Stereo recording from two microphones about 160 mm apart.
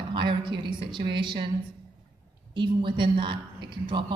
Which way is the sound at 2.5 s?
30° right (ahead or behind).